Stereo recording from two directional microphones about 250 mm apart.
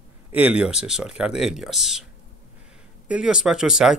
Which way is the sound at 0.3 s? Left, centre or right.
Centre.